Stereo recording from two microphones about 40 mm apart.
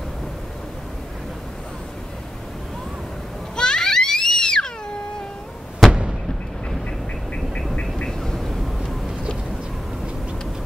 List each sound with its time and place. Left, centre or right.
3.5 s children playing: centre
5.9 s fireworks: right
7.8 s a sound: centre